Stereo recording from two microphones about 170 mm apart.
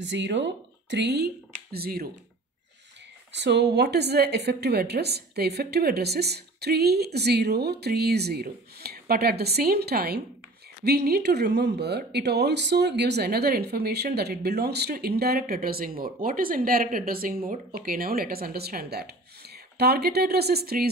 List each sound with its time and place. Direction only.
0.0 s speech: 90° right; by 2.0 s 65° right (ahead or behind)
3.3 s a woman's voice: 85° right; by 20.9 s 65° right (ahead or behind)